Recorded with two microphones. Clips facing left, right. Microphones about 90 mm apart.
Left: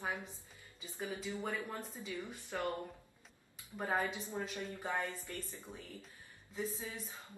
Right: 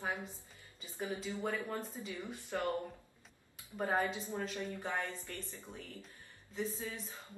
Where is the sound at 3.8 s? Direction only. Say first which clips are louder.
Right 2 dB; 20° right (ahead or behind).